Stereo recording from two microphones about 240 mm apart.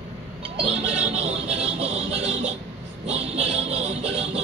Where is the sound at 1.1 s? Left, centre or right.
Right.